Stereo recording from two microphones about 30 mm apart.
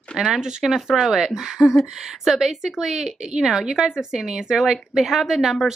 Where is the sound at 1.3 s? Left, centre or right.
Right.